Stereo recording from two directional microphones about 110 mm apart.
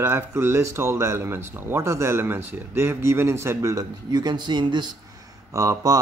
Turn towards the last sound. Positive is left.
turn(degrees=-30)  # may be behind; listen again after turning